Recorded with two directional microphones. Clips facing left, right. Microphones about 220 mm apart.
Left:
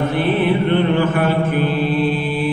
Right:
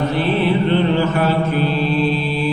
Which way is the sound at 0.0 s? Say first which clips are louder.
Left 1 dB; 50° left (ahead or behind).